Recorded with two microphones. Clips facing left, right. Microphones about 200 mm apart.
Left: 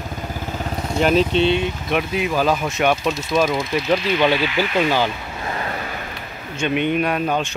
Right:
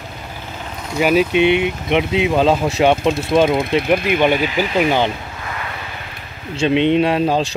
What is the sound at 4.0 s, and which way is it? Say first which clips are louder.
Speech: right 3 dB; 55° right (ahead or behind).